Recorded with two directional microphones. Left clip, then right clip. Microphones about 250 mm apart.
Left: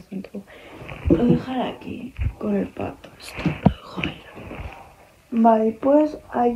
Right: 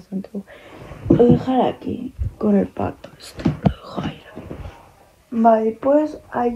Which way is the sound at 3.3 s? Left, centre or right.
Centre.